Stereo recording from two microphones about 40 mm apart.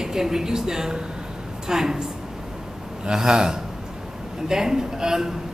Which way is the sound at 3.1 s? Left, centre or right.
Centre.